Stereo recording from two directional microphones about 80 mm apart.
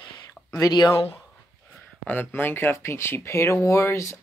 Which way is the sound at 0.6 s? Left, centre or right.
Left.